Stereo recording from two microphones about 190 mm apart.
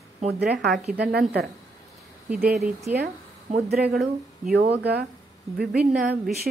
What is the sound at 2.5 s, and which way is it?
Speech, centre (ahead or behind).